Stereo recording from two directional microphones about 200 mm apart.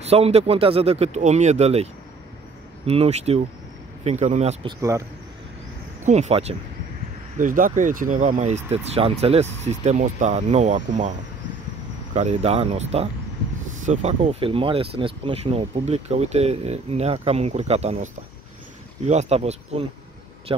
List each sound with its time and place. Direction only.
0.1 s speech: 30° right (ahead or behind)
2.9 s speech: 30° right (ahead or behind)
6.0 s speech: 35° right (ahead or behind)